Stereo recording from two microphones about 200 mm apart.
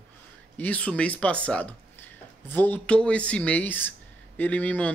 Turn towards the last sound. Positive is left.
turn(degrees=10)  # may be behind; listen again after turning